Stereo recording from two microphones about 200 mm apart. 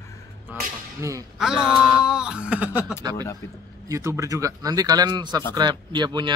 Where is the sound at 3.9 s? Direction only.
15° right (ahead or behind).